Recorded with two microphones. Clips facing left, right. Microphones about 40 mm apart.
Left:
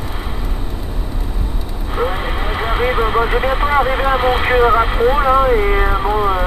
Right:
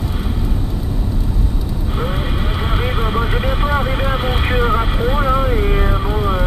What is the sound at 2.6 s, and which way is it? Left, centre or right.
Speech, centre.